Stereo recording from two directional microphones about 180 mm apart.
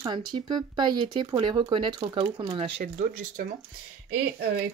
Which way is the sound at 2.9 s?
45° right (ahead or behind).